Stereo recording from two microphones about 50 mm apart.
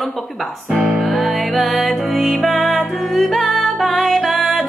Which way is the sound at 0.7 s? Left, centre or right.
Right.